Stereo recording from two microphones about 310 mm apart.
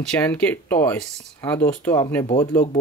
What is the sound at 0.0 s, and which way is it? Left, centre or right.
Speech, centre.